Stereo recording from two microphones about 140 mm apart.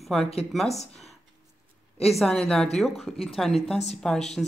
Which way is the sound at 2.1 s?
5° left (ahead or behind).